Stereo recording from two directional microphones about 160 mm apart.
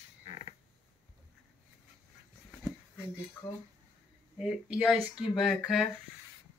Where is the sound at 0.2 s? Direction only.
45° left (ahead or behind).